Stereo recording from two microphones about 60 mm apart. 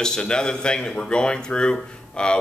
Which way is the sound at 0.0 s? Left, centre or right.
Centre.